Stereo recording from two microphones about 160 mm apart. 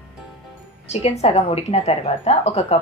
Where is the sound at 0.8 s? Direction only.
45° left (ahead or behind).